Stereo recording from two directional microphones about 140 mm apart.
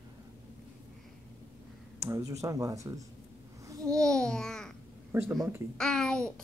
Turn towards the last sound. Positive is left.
turn(degrees=5)  # may be behind; listen again after turning